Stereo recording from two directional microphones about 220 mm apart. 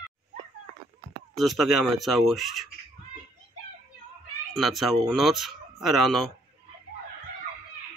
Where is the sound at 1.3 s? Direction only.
Centre (ahead or behind).